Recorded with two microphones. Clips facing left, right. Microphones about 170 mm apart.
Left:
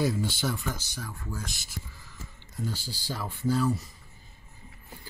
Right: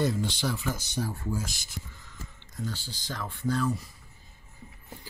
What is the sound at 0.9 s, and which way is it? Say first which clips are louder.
Speech: right 8 dB; 30° right (ahead or behind).